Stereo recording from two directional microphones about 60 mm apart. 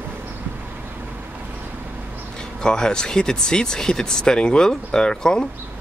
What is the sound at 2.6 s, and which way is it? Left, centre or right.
Speech, centre.